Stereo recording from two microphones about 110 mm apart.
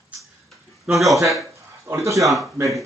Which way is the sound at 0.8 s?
Centre (ahead or behind).